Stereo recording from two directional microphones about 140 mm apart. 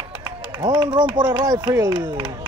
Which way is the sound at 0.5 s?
25° right (ahead or behind).